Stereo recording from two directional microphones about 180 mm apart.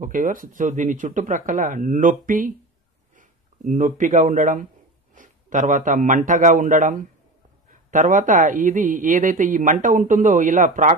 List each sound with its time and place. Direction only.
0.0 s a man's voice: 50° right (ahead or behind)